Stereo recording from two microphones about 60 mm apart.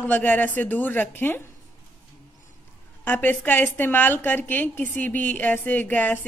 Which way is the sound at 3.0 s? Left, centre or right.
Left.